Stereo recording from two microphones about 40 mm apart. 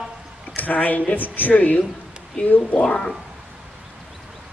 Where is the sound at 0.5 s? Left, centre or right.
Left.